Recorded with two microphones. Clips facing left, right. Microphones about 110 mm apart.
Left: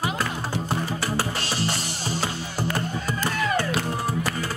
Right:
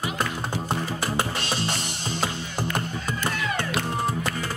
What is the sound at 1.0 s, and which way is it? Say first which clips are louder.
Music: even; 20° right (ahead or behind).